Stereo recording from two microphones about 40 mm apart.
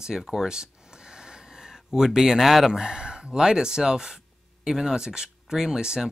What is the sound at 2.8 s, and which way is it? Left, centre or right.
Speech, right.